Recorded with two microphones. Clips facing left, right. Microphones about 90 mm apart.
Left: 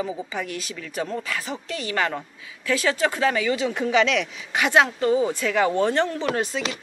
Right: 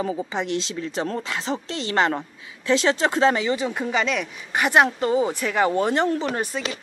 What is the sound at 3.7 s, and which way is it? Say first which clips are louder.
Speech: left 3 dB; centre (ahead or behind).